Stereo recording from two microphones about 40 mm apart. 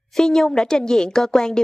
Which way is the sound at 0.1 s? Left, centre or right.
Centre.